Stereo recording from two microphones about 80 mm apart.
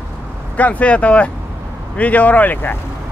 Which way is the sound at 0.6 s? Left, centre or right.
Centre.